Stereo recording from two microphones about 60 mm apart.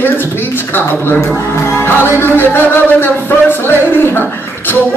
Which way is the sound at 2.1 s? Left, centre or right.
Left.